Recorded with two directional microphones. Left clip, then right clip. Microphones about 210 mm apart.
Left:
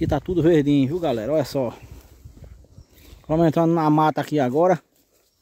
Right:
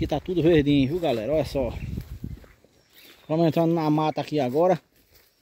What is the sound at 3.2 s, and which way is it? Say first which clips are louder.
Speech: left 3 dB; 15° left (ahead or behind).